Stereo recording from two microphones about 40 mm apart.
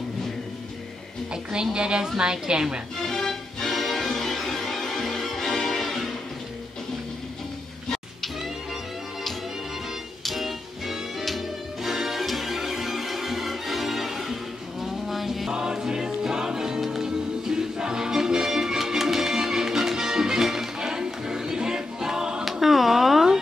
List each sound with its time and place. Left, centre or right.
1.3 s a woman's voice: centre
3.0 s music: centre
10.2 s music: centre
15.5 s music: centre
22.4 s music: centre